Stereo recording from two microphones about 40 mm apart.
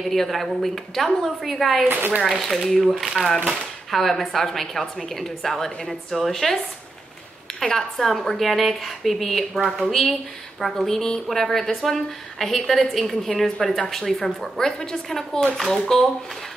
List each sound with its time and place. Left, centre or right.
0.0 s a woman's voice: centre
1.9 s speech: right
2.2 s a woman's voice: centre
7.6 s a woman's voice: centre
10.9 s a woman's voice: centre
14.6 s a woman's voice: centre